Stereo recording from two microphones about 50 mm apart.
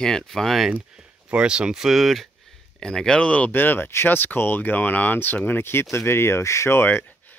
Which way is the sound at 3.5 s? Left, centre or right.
Left.